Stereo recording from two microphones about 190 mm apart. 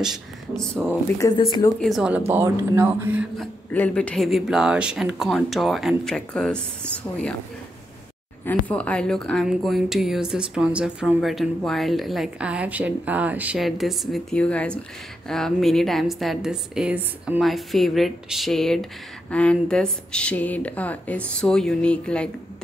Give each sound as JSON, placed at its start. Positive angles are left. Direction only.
{"t": 0.0, "sound": "speech", "side_deg": 0}
{"t": 1.0, "sound": "speech", "side_deg": 15}
{"t": 1.8, "sound": "speech", "side_deg": 0}
{"t": 3.3, "sound": "speech", "side_deg": 5}
{"t": 8.5, "sound": "speech", "side_deg": 5}